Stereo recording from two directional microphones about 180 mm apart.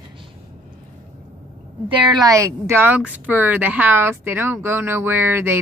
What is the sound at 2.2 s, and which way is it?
A woman's voice, 15° right (ahead or behind).